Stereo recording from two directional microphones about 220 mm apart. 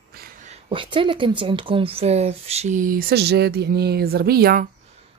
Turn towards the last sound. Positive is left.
turn(degrees=-45)  # may be behind; listen again after turning